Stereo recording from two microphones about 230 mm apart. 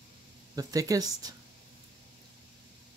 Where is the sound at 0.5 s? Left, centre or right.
Centre.